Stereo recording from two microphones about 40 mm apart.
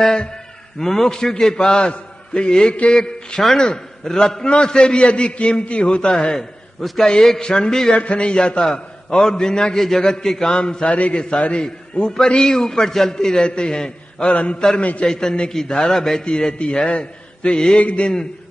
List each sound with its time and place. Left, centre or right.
0.0 s a man's voice: centre
6.3 s a man's voice: centre
7.9 s a man's voice: left
9.8 s a man's voice: centre
10.9 s a man's voice: left
11.1 s a man's voice: left
15.0 s a man's voice: centre
16.3 s a man's voice: left